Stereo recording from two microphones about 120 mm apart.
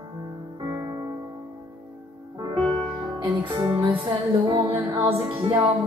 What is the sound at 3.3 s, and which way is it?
Music, 40° right (ahead or behind).